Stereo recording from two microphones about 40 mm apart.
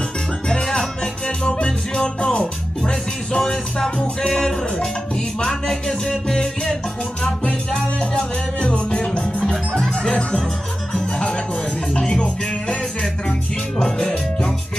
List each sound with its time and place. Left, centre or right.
0.5 s music: centre
1.4 s music: left
11.9 s music: centre